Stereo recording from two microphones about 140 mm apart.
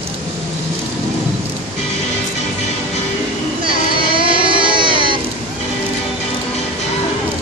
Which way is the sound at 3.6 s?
35° right (ahead or behind).